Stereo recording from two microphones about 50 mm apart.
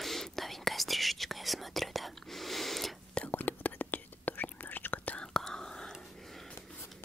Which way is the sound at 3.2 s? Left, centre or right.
Left.